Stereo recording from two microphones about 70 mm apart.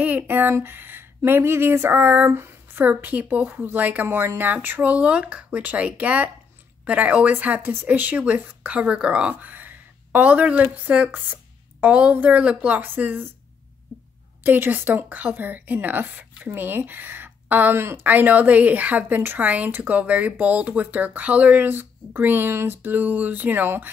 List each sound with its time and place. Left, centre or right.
0.0 s a woman's voice: right
14.4 s a woman's voice: right
17.7 s speech: right
18.0 s a woman's voice: right